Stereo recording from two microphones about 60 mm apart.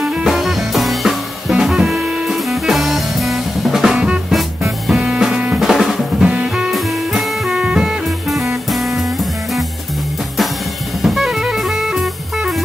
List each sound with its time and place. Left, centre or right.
0.0 s music: centre
0.3 s music: centre
5.6 s drum: centre
6.2 s music: centre
6.5 s music: centre
7.5 s music: centre
8.6 s music: centre
11.0 s music: centre